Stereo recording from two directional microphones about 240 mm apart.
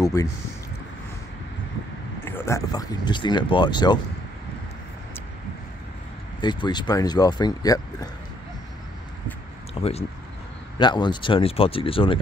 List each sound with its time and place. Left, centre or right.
0.0 s speech: centre
2.2 s speech: centre
6.4 s speech: centre
9.8 s speech: left